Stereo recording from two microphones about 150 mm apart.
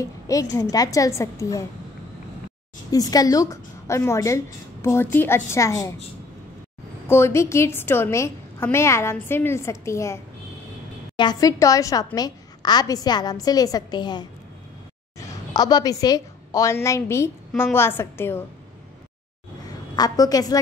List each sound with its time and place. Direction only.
0.0 s a woman's voice: 25° left (ahead or behind)
2.9 s a woman's voice: 25° left (ahead or behind)
7.1 s a woman's voice: 15° left (ahead or behind)
20.0 s a woman's voice: 25° left (ahead or behind)